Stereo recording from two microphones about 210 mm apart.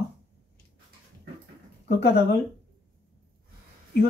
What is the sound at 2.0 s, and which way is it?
Speech, 50° left (ahead or behind).